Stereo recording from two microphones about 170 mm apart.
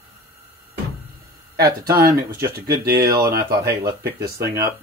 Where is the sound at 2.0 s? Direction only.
65° right (ahead or behind).